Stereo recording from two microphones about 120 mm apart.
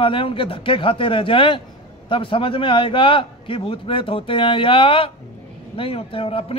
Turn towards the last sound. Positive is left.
turn(degrees=50)  # may be behind; listen again after turning